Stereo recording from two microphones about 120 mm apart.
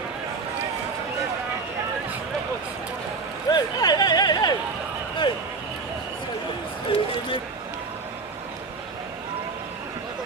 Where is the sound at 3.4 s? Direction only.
35° left (ahead or behind).